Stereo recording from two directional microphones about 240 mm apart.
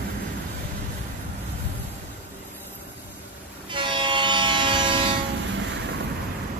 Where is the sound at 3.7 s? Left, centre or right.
Centre.